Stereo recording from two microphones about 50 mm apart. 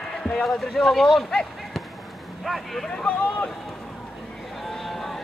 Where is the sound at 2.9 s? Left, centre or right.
Left.